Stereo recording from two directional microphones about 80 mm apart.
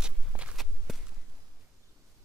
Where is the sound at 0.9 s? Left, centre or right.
Centre.